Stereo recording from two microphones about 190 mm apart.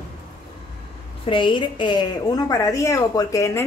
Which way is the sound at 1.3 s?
25° left (ahead or behind).